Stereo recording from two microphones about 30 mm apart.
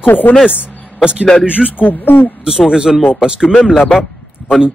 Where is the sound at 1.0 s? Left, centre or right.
Right.